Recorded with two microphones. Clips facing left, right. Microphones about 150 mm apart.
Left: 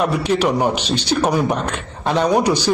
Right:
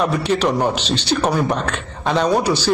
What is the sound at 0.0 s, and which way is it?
A man's voice, 10° left (ahead or behind).